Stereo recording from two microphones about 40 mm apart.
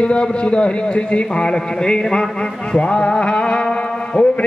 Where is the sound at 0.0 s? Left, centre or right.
Left.